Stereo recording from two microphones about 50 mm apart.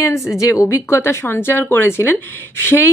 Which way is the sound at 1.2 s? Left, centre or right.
Left.